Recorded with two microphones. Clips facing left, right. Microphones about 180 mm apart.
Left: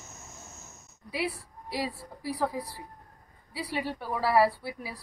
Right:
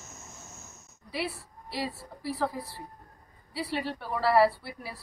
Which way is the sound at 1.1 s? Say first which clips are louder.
Left 2 dB; 15° left (ahead or behind).